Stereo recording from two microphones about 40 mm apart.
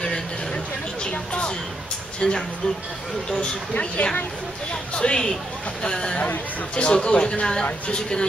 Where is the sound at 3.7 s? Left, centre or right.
Left.